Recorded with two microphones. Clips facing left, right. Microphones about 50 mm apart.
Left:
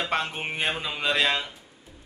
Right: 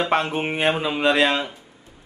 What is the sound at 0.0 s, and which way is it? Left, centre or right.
Speech, centre.